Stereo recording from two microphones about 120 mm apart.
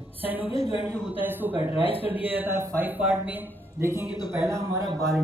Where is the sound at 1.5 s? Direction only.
50° left (ahead or behind).